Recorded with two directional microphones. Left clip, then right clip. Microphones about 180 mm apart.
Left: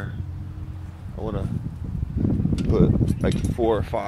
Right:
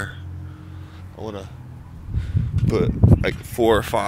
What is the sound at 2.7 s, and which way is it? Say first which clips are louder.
Speech: right 2 dB; centre (ahead or behind).